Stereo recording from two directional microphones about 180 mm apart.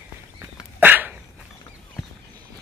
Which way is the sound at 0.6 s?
10° right (ahead or behind).